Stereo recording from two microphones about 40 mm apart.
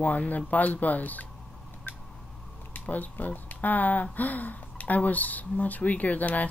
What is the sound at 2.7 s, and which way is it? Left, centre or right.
Speech, left.